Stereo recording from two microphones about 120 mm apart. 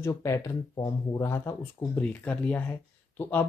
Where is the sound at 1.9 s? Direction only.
10° left (ahead or behind).